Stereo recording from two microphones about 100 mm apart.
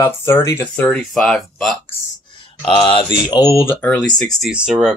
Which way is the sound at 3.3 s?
35° left (ahead or behind).